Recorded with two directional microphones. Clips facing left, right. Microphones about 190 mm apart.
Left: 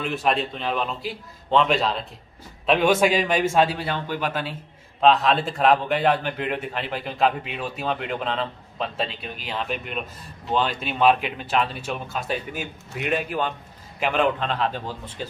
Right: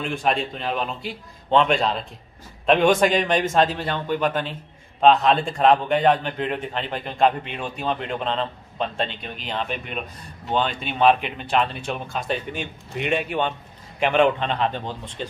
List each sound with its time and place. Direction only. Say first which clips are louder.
0.0 s a man's voice: even; 5° left (ahead or behind)